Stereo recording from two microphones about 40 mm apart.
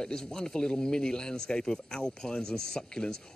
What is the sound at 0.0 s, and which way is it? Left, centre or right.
Speech, centre.